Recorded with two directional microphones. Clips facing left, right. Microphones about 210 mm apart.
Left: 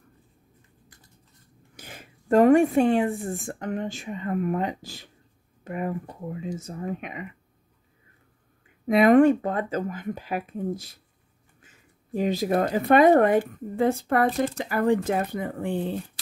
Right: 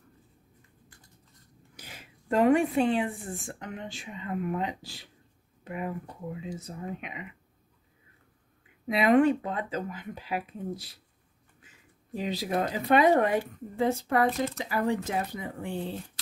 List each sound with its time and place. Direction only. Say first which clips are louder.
1.8 s speech: left 4 dB; 50° left (ahead or behind)
8.8 s speech: left 5 dB; 50° left (ahead or behind)
12.1 s speech: left 7 dB; 50° left (ahead or behind)